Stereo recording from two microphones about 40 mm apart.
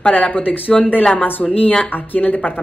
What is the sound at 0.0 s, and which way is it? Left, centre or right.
Speech, left.